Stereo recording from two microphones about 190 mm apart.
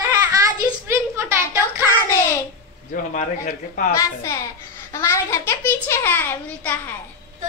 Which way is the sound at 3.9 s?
15° left (ahead or behind).